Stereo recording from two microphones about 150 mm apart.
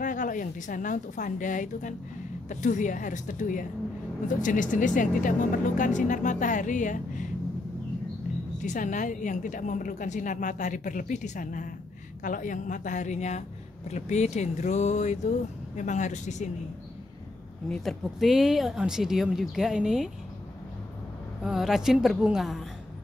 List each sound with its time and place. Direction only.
0.0 s a woman's voice: 60° left (ahead or behind)
8.6 s a woman's voice: 55° left (ahead or behind)
17.6 s speech: centre (ahead or behind)
21.5 s speech: centre (ahead or behind)